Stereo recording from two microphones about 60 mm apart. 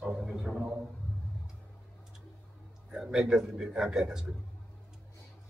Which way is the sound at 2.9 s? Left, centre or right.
Centre.